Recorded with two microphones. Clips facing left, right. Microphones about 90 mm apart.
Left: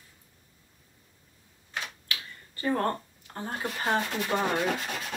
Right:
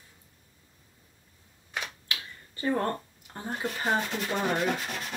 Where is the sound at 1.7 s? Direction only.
20° right (ahead or behind).